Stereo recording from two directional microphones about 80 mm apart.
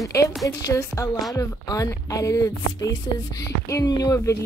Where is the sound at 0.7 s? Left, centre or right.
Left.